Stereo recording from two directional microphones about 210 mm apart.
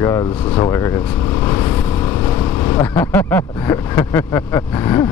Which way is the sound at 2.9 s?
10° left (ahead or behind).